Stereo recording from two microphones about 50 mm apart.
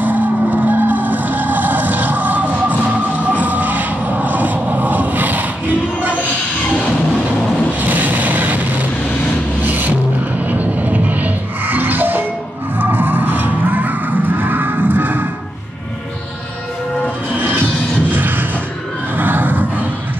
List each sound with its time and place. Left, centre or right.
0.0 s vehicle: right
7.8 s vehicle: right
9.6 s music: right
18.1 s music: right
19.1 s a sound: right